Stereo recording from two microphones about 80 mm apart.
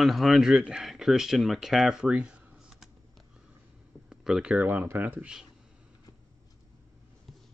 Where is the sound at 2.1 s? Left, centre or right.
Centre.